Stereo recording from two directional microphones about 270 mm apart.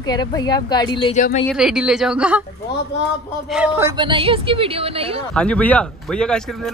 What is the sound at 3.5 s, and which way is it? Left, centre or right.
A woman's voice, centre.